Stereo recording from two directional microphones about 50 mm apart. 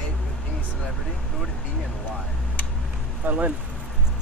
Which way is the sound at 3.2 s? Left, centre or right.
Right.